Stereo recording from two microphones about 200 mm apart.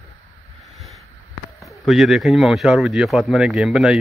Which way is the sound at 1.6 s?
Centre (ahead or behind).